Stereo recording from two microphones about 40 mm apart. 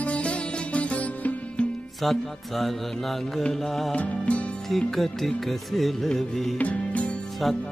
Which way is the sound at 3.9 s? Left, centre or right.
Left.